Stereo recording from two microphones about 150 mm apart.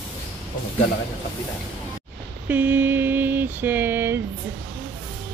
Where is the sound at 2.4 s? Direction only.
10° right (ahead or behind).